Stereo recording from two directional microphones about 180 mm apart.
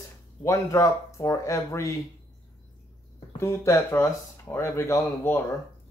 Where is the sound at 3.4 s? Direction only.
15° left (ahead or behind).